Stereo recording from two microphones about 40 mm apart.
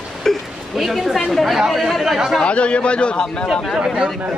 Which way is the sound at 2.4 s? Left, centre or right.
Left.